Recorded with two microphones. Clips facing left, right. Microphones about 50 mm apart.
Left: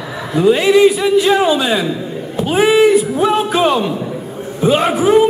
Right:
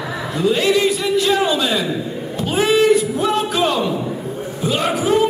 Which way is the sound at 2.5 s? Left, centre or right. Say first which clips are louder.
Left 4 dB; centre.